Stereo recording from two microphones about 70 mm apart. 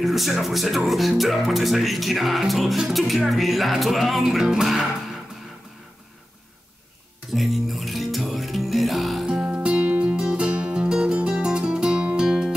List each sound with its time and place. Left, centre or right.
0.0 s speech: centre
7.3 s music: centre
9.2 s music: centre